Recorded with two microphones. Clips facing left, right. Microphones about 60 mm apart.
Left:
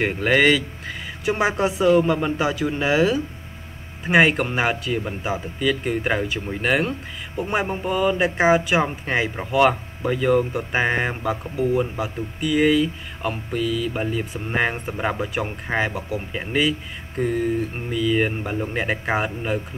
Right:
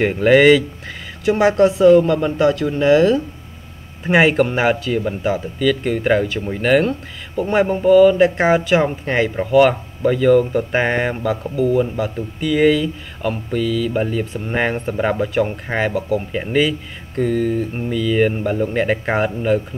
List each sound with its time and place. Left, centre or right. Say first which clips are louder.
0.0 s speech: right 6 dB; centre
17.2 s speech: right 4 dB; centre